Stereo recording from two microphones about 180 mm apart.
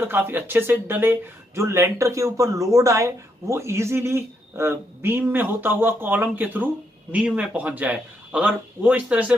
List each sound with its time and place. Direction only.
0.0 s speech: 10° right (ahead or behind)